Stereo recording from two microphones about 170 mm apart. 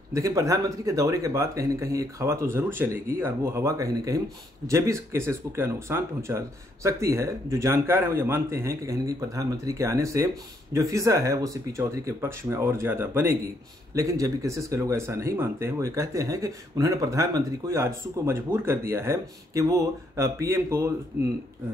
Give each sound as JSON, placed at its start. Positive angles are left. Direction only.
{"t": 0.1, "sound": "speech", "side_deg": -20}